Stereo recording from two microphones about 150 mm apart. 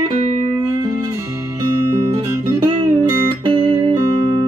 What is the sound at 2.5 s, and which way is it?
Music, 25° right (ahead or behind).